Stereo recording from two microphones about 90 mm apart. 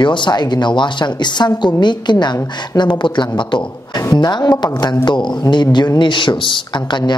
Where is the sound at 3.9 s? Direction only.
45° left (ahead or behind).